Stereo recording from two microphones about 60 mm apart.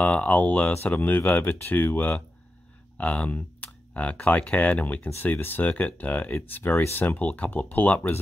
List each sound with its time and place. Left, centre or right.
0.0 s speech: left